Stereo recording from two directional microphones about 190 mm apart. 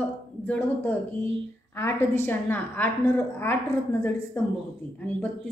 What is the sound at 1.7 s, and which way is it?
A woman's voice, 10° left (ahead or behind).